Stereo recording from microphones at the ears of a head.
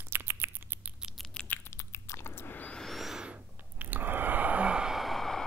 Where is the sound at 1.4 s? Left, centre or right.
Left.